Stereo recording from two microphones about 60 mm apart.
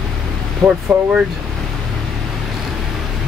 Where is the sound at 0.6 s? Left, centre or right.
Centre.